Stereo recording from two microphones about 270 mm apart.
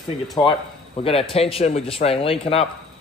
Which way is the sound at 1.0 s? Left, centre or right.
Left.